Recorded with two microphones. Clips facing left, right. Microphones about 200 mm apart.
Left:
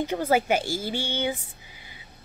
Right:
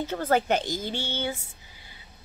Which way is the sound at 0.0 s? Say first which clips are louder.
Left 2 dB; 10° left (ahead or behind).